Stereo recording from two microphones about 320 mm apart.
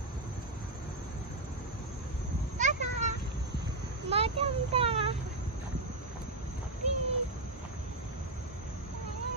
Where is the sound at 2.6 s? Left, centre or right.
Right.